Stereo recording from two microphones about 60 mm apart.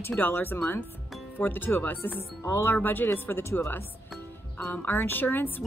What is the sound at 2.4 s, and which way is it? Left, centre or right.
Speech, left.